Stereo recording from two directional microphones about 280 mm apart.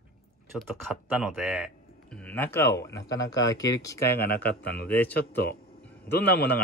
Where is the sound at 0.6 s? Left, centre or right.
Centre.